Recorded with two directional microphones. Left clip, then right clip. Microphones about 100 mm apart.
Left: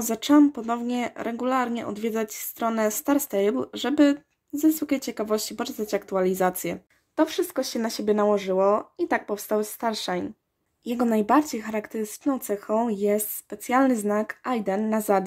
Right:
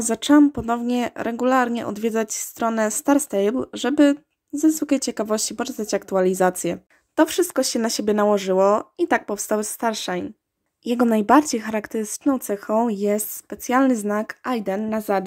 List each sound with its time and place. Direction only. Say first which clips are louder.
0.0 s speech: right 3 dB; 25° right (ahead or behind)
4.7 s speech: right 5 dB; 35° right (ahead or behind); by 14.9 s 15° right (ahead or behind)
14.9 s speech: even; centre (ahead or behind)